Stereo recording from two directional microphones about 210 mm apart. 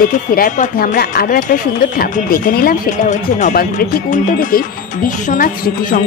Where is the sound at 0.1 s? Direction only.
40° left (ahead or behind).